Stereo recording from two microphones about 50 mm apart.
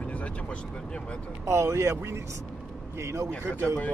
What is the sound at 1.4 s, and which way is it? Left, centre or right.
Speech, right.